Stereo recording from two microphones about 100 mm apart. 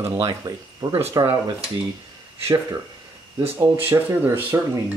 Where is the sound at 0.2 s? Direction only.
40° right (ahead or behind).